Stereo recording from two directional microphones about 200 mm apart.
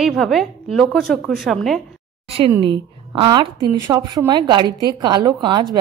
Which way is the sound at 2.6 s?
25° right (ahead or behind).